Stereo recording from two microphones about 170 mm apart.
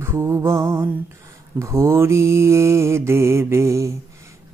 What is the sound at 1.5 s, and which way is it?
Mantra, 15° right (ahead or behind).